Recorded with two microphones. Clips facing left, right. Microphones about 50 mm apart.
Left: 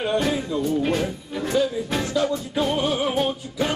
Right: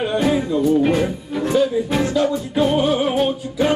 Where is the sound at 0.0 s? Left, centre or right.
Centre.